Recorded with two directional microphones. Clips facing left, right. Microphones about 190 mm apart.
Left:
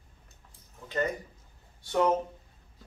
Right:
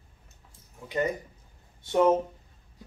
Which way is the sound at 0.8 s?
15° right (ahead or behind).